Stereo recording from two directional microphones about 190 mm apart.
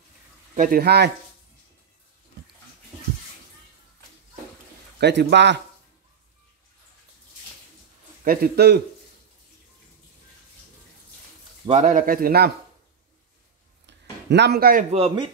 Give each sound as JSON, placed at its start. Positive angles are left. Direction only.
{"t": 0.6, "sound": "speech", "side_deg": -50}
{"t": 5.0, "sound": "speech", "side_deg": -65}
{"t": 8.2, "sound": "speech", "side_deg": -50}
{"t": 11.6, "sound": "speech", "side_deg": -35}
{"t": 14.3, "sound": "speech", "side_deg": -60}
{"t": 14.9, "sound": "speech", "side_deg": -30}